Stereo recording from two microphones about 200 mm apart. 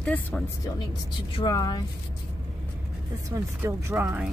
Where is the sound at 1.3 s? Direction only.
20° left (ahead or behind).